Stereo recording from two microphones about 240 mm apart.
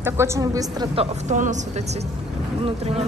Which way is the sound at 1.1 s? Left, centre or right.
Right.